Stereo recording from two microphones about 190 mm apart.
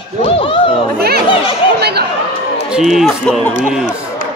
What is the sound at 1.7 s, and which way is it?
Chatter, 60° right (ahead or behind).